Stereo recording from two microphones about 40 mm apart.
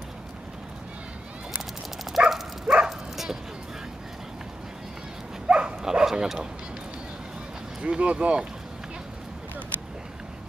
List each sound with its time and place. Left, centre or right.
2.1 s dog: centre
2.6 s bow-wow: right
5.5 s dog: right
5.9 s bow-wow: centre
7.8 s speech: right